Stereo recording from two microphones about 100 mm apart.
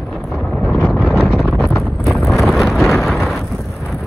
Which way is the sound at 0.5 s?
5° left (ahead or behind).